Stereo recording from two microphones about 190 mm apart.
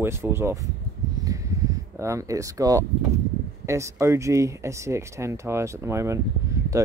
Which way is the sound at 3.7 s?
15° right (ahead or behind).